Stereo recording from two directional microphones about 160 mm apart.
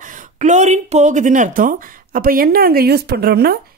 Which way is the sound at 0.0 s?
55° right (ahead or behind).